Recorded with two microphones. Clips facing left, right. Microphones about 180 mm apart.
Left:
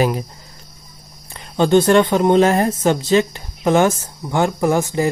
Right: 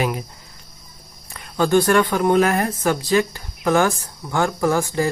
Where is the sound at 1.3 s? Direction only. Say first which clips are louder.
Left 3 dB; 25° left (ahead or behind).